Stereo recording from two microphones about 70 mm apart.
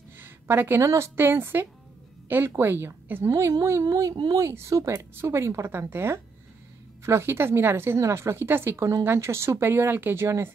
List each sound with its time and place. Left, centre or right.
0.2 s a sound: right
0.8 s speech: right
3.3 s speech: right